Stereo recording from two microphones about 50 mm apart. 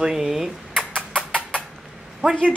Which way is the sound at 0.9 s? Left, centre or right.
Right.